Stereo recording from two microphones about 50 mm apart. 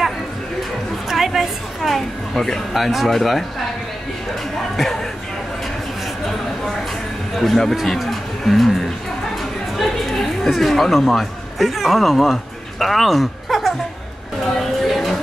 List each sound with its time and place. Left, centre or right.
1.0 s a woman's voice: centre
7.3 s a woman's voice: centre
9.4 s chatter: centre
14.4 s a sound: centre